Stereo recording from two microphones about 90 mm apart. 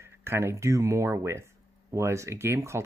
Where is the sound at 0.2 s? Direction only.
30° right (ahead or behind).